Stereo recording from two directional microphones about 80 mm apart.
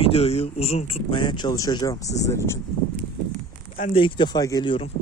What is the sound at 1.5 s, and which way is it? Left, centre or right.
Speech, left.